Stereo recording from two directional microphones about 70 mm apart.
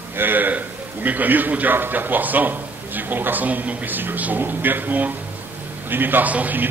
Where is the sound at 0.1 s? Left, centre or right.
Right.